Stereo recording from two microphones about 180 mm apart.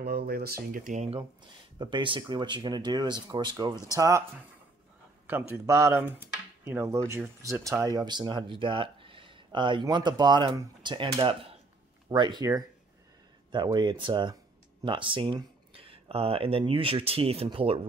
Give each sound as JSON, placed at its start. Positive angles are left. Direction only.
{"t": 0.0, "sound": "speech", "side_deg": -60}
{"t": 1.8, "sound": "speech", "side_deg": -25}
{"t": 5.2, "sound": "speech", "side_deg": -10}